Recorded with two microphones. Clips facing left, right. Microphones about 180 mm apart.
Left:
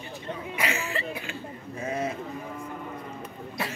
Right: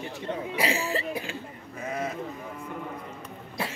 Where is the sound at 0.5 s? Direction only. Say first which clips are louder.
Right 2 dB; 35° right (ahead or behind).